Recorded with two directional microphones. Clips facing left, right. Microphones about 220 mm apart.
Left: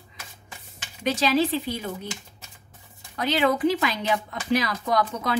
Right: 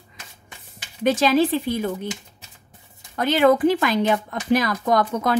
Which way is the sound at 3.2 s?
50° right (ahead or behind).